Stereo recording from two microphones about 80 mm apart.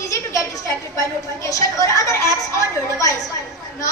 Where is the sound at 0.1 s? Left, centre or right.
Left.